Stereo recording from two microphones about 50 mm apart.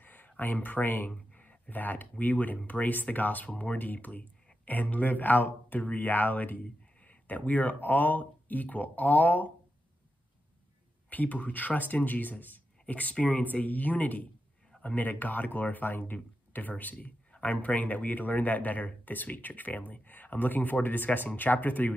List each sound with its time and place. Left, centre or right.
0.0 s a sound: left
0.4 s speech: left
11.1 s speech: left